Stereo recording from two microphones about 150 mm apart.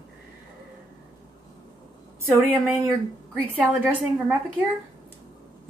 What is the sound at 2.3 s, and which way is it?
Speech, 10° right (ahead or behind).